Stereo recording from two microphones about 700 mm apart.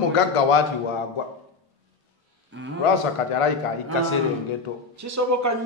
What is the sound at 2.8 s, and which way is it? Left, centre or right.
Speech, left.